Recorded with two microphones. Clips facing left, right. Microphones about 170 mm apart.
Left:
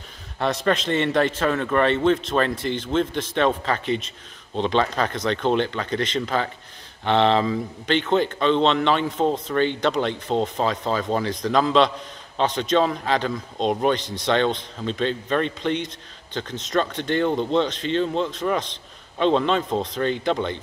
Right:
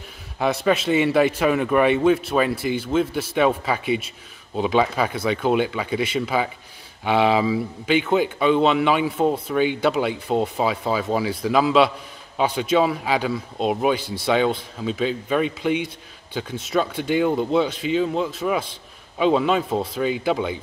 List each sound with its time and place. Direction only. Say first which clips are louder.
0.4 s speech: right 2 dB; 5° right (ahead or behind)